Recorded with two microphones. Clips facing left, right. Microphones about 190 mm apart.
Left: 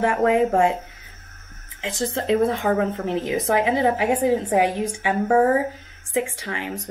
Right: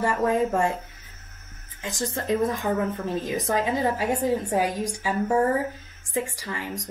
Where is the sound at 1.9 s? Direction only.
25° left (ahead or behind).